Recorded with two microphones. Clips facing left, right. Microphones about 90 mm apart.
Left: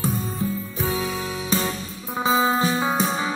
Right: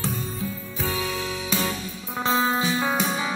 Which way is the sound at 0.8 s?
Centre (ahead or behind).